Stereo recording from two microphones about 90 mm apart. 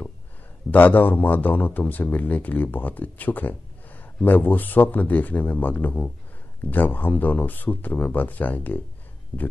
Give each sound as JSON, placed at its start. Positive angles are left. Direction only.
{"t": 0.7, "sound": "a man's voice", "side_deg": 20}